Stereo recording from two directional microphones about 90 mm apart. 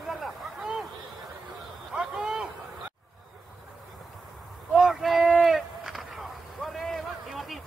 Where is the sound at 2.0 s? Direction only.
10° right (ahead or behind).